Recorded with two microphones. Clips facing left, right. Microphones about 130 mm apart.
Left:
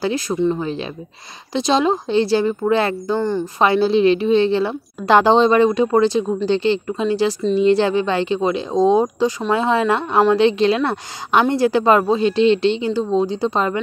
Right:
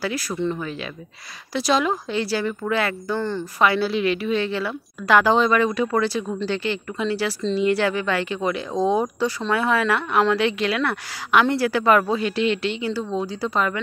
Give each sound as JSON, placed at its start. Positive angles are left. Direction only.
{"t": 0.0, "sound": "a woman's voice", "side_deg": 20}
{"t": 3.2, "sound": "speech", "side_deg": 15}
{"t": 3.6, "sound": "a woman's voice", "side_deg": 25}